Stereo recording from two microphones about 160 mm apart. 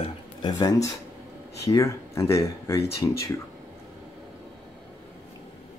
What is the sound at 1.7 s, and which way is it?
Speech, 20° left (ahead or behind).